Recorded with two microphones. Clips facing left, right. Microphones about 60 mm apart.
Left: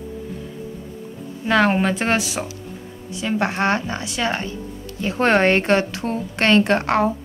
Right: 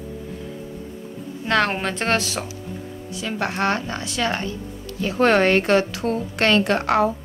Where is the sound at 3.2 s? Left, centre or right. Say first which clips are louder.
Left 3 dB; left.